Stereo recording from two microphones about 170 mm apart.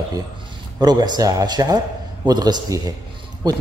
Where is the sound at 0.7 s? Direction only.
25° right (ahead or behind).